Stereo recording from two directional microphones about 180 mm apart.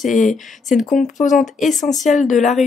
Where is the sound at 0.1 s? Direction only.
45° left (ahead or behind).